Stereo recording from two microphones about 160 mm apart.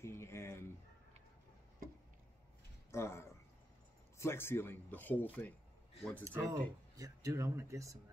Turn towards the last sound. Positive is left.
turn(degrees=-20)  # may be behind; listen again after turning